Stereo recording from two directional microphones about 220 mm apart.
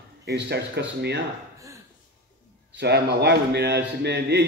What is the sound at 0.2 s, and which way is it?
A man's voice, 50° right (ahead or behind).